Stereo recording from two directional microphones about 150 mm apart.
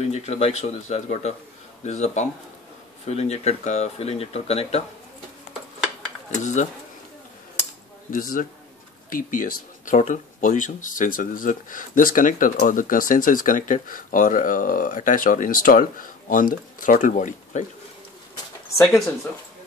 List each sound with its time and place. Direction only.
0.0 s speech: 45° left (ahead or behind)
6.3 s speech: 55° left (ahead or behind)
8.1 s speech: 65° left (ahead or behind)
18.8 s speech: 5° left (ahead or behind)